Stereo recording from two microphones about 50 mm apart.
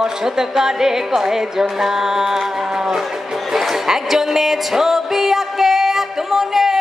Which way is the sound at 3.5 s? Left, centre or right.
Centre.